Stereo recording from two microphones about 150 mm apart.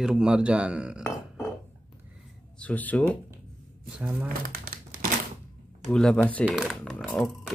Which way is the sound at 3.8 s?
5° right (ahead or behind).